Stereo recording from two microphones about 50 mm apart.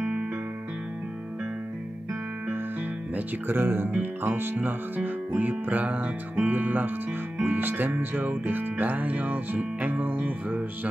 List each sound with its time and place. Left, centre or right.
3.4 s speech: right
4.0 s music: right